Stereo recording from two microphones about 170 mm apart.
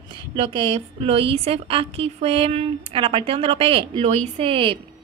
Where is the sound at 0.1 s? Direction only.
30° right (ahead or behind).